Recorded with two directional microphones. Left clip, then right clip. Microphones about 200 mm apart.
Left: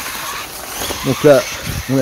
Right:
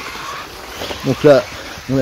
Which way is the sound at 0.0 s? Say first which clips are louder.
Left 2 dB; 55° left (ahead or behind).